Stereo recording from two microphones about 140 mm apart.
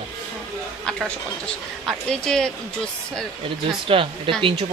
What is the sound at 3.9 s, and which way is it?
Speech, 40° right (ahead or behind).